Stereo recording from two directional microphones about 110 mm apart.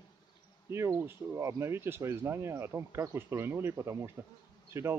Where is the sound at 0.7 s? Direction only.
25° right (ahead or behind).